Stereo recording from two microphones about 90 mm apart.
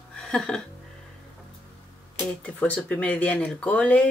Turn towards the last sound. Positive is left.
turn(degrees=15)  # may be behind; listen again after turning